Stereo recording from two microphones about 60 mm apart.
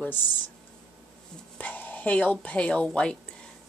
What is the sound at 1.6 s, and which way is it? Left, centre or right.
Speech, left.